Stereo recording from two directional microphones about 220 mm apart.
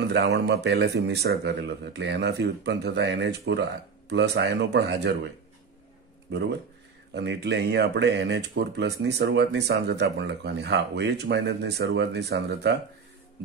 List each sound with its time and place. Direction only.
0.1 s speech: 50° right (ahead or behind)
7.2 s speech: 50° right (ahead or behind)